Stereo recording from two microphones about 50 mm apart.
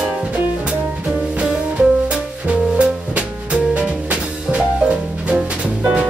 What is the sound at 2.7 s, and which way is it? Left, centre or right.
Music, right.